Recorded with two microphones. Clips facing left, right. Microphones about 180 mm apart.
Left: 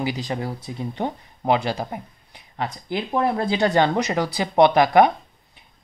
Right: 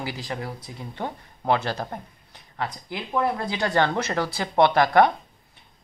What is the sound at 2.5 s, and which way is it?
Speech, 30° left (ahead or behind).